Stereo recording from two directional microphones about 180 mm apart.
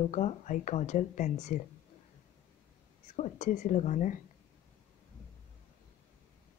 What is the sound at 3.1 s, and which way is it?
A woman's voice, 40° left (ahead or behind).